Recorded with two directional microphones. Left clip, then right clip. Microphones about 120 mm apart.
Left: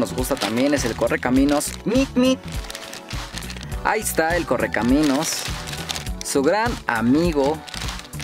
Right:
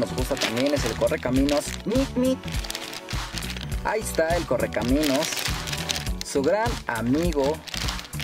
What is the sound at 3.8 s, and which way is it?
Speech, 40° left (ahead or behind).